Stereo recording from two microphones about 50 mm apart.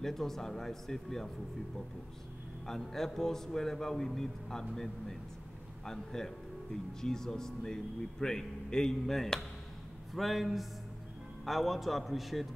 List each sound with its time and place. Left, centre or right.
0.0 s speech: centre
2.6 s a man's voice: centre